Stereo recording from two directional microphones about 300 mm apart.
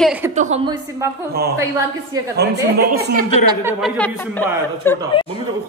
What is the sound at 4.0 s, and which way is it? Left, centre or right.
Speech, centre.